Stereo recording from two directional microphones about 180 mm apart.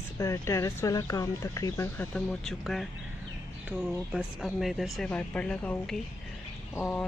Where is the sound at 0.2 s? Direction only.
15° left (ahead or behind).